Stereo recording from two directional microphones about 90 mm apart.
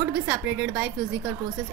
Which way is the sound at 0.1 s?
15° right (ahead or behind).